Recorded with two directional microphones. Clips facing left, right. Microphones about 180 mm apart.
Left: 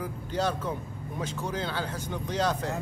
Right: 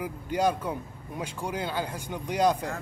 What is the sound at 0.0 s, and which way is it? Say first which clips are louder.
Speech: right 3 dB; 10° right (ahead or behind).